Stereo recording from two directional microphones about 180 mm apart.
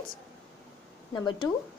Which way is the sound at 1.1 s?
25° left (ahead or behind).